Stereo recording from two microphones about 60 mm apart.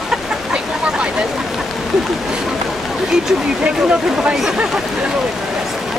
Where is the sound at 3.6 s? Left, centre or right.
Centre.